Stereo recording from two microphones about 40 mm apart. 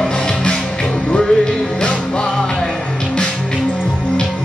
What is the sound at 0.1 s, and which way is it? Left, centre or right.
Music, left.